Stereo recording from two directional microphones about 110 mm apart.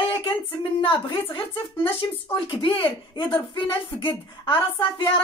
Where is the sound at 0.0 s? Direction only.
50° left (ahead or behind).